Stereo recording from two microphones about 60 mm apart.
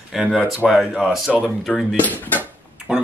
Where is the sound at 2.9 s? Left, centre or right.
Right.